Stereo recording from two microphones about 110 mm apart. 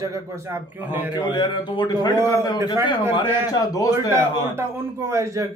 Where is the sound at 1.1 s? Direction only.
45° left (ahead or behind).